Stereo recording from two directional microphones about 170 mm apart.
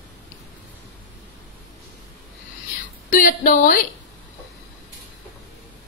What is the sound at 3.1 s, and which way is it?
Speech, 55° left (ahead or behind).